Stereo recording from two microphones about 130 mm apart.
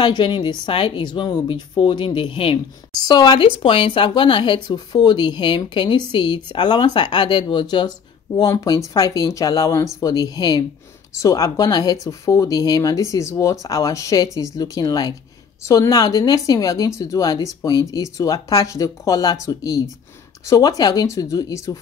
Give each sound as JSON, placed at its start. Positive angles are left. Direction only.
{"t": 0.0, "sound": "speech", "side_deg": 35}
{"t": 3.0, "sound": "speech", "side_deg": 30}